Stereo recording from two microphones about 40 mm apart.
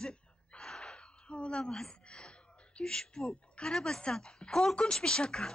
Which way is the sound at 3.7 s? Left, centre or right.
Centre.